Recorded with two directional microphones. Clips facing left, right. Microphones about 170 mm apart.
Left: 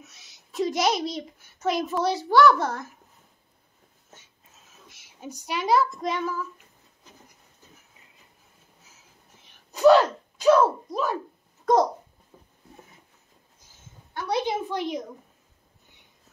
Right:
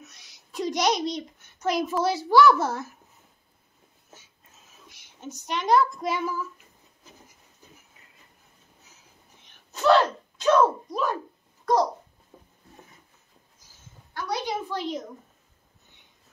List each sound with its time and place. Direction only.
0.0 s a child's voice: 5° left (ahead or behind)
4.8 s a woman's voice: 5° left (ahead or behind)
9.3 s a sound: centre (ahead or behind)
9.8 s speech: 15° left (ahead or behind)
12.3 s a sound: 15° right (ahead or behind)
14.1 s a woman's voice: 25° left (ahead or behind)